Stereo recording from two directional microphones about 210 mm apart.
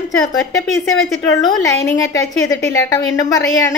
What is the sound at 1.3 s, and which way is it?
A woman's voice, 15° left (ahead or behind).